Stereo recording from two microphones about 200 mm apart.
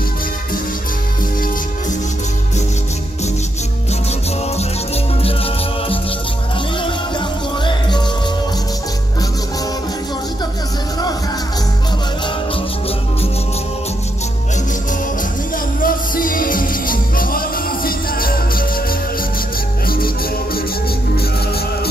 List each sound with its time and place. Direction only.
4.6 s music: 30° left (ahead or behind)
15.5 s music: 45° left (ahead or behind)